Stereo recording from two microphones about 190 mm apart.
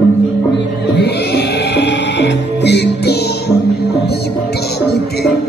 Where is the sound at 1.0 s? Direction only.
60° left (ahead or behind).